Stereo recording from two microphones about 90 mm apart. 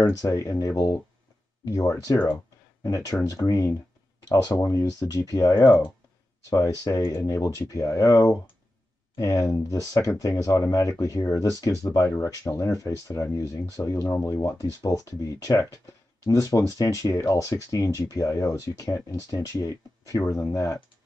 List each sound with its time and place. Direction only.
0.2 s speech: 35° left (ahead or behind)